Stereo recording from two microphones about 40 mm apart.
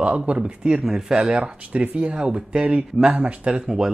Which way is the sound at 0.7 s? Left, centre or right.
Centre.